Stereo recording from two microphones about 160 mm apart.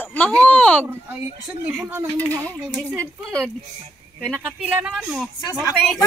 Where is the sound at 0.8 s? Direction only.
15° right (ahead or behind).